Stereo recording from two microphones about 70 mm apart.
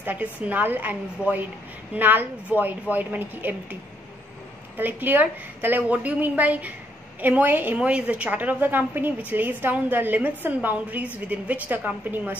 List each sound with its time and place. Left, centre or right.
0.0 s a woman's voice: right
4.7 s a woman's voice: right
7.8 s a woman's voice: centre